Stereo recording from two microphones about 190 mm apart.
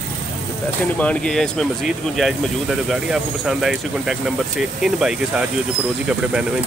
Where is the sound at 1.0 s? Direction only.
5° left (ahead or behind).